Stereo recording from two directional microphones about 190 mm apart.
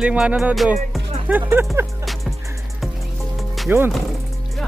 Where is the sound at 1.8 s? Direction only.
15° right (ahead or behind).